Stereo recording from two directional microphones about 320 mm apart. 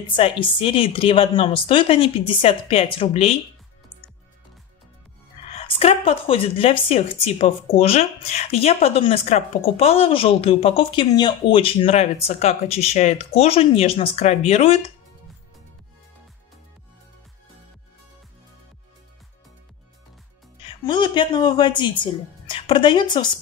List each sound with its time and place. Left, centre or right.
0.0 s speech: centre
5.5 s speech: centre
20.6 s speech: centre